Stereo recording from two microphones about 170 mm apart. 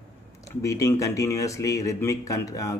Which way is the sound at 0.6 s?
20° left (ahead or behind).